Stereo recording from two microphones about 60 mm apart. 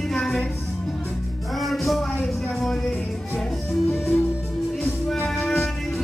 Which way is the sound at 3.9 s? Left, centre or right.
Left.